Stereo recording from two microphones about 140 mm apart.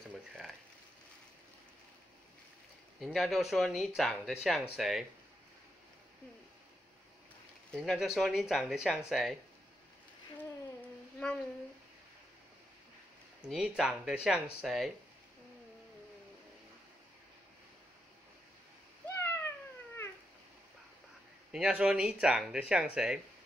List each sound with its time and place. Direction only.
0.1 s a sound: centre (ahead or behind)
3.0 s speech: centre (ahead or behind)
7.7 s speech: 5° left (ahead or behind)
13.5 s speech: 5° right (ahead or behind)
19.0 s cat: 20° left (ahead or behind)
21.5 s speech: 5° right (ahead or behind)